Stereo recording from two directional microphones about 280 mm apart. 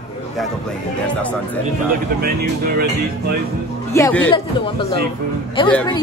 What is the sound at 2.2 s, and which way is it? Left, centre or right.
Speech, right.